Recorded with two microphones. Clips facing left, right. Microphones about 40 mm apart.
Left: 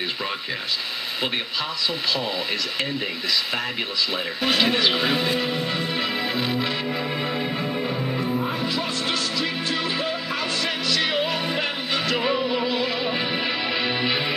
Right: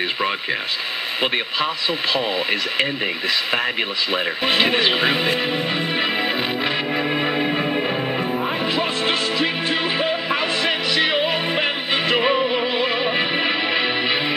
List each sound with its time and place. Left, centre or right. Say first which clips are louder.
4.1 s music: right 5 dB; right